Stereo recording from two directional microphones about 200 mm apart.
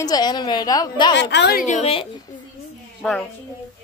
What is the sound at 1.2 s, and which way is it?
Speech, 60° left (ahead or behind).